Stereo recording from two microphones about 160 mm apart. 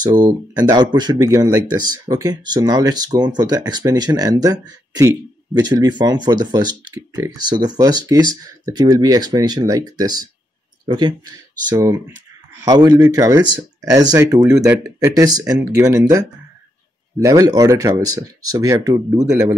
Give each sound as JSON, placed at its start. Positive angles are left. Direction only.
{"t": 0.0, "sound": "speech", "side_deg": -25}
{"t": 14.7, "sound": "speech", "side_deg": -10}
{"t": 15.1, "sound": "speech", "side_deg": -25}
{"t": 17.2, "sound": "speech", "side_deg": -20}